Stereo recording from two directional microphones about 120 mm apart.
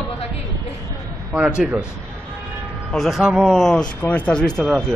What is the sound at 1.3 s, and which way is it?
Speech, 10° right (ahead or behind).